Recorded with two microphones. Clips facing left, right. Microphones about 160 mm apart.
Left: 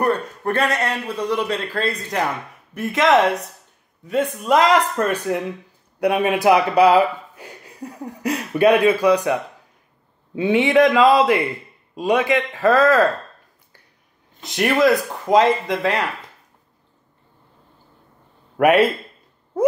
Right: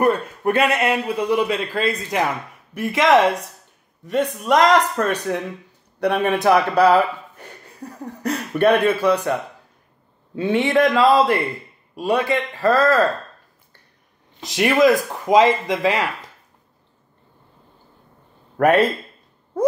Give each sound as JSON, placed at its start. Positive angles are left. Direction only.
{"t": 0.4, "sound": "a man's voice", "side_deg": -10}
{"t": 14.4, "sound": "a man's voice", "side_deg": 0}
{"t": 18.6, "sound": "a man's voice", "side_deg": 10}